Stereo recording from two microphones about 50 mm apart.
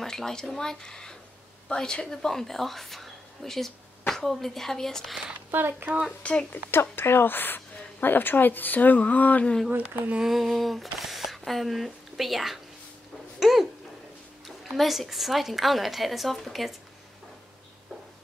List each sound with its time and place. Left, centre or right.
0.0 s a woman's voice: centre
5.5 s speech: right
6.2 s speech: left
6.7 s a woman's voice: left
9.7 s speech: right
10.2 s speech: centre
14.8 s a woman's voice: centre